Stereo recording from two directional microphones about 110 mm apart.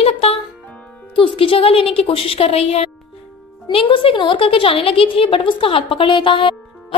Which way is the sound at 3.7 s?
55° left (ahead or behind).